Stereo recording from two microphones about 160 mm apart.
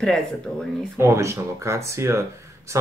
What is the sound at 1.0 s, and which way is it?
Speech, 15° right (ahead or behind).